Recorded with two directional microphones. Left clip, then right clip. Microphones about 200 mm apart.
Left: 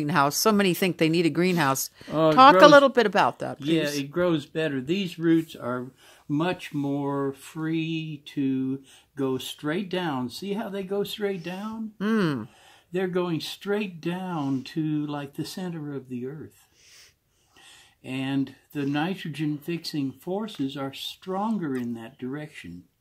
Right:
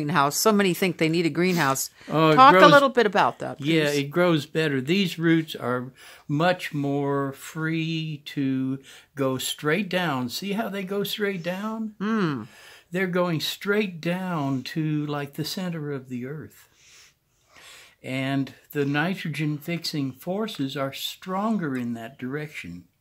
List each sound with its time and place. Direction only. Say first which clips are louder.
0.0 s speech: right 1 dB; 10° left (ahead or behind)
4.1 s speech: right 3 dB; 45° right (ahead or behind)
12.0 s speech: left 1 dB; 15° left (ahead or behind)
12.9 s speech: right 2 dB; 40° right (ahead or behind)
18.0 s speech: right 2 dB; 30° right (ahead or behind)